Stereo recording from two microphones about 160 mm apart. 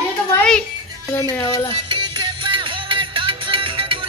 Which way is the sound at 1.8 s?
30° right (ahead or behind).